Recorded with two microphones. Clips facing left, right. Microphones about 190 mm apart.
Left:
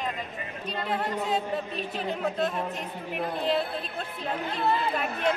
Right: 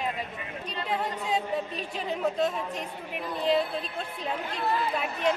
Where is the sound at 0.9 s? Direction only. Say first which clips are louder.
Left 1 dB; 5° left (ahead or behind).